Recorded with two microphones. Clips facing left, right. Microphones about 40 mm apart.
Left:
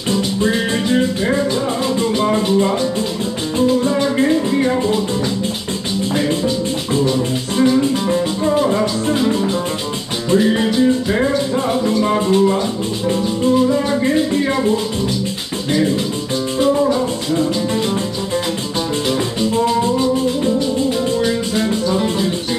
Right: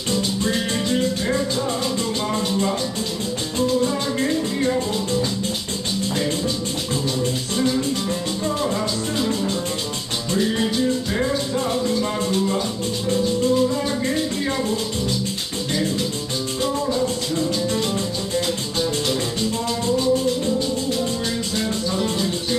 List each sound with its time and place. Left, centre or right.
0.1 s music: left
7.5 s music: left
16.6 s music: left
19.5 s music: left
21.2 s music: left